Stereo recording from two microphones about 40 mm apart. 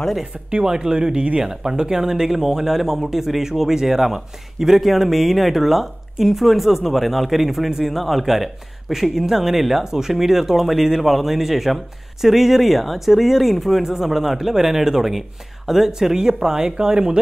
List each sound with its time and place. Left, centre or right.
0.7 s speech: centre
1.4 s speech: centre
16.6 s speech: right